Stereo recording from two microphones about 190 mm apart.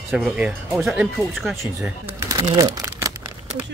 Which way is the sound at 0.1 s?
5° right (ahead or behind).